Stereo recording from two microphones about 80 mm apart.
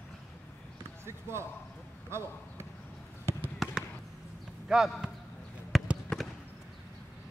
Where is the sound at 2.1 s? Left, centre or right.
Right.